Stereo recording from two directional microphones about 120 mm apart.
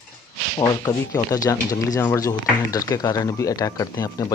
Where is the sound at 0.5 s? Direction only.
30° left (ahead or behind).